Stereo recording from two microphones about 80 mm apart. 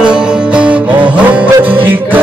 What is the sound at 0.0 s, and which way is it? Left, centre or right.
Music, centre.